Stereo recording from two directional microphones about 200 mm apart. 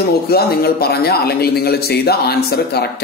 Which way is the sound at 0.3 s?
50° left (ahead or behind).